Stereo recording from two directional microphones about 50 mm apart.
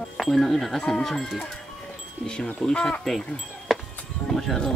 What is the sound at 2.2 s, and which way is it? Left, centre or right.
Speech, left.